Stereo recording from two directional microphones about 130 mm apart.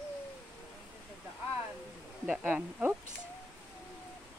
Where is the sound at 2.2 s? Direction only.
10° right (ahead or behind).